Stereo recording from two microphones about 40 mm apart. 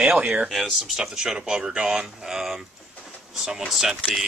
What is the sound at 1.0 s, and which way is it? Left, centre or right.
Speech, centre.